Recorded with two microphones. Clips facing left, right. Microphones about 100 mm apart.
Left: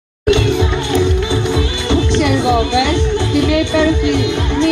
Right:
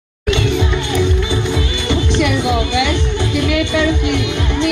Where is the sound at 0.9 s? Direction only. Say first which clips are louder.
Left 3 dB; 25° left (ahead or behind).